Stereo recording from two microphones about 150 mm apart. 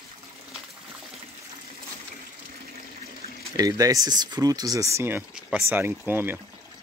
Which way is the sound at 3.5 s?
25° right (ahead or behind).